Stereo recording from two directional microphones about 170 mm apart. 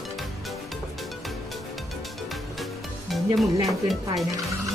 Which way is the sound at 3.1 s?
Centre (ahead or behind).